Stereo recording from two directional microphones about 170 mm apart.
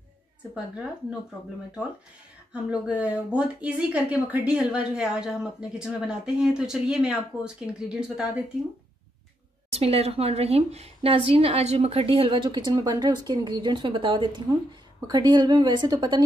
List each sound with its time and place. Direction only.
2.5 s speech: 5° right (ahead or behind)
9.7 s a woman's voice: 35° right (ahead or behind)